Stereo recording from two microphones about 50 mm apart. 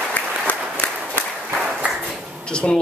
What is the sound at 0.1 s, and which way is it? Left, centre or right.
Applause, left.